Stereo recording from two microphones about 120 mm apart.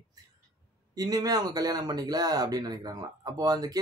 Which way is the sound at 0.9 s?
30° right (ahead or behind).